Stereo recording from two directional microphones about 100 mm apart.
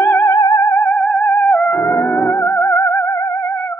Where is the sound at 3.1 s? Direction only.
30° left (ahead or behind).